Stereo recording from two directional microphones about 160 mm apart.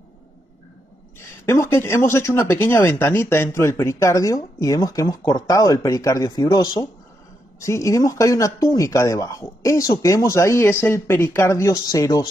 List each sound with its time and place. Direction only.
1.4 s speech: 15° left (ahead or behind)